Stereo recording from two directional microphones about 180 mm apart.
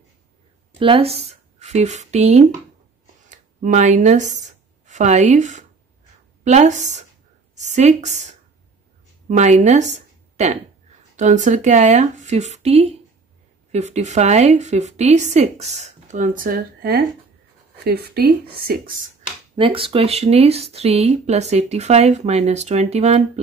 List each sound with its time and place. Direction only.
0.7 s a woman's voice: 30° right (ahead or behind); by 18.9 s 55° right (ahead or behind)
19.5 s speech: 30° right (ahead or behind)